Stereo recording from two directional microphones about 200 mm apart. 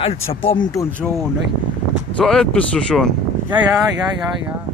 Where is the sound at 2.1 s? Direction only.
5° left (ahead or behind).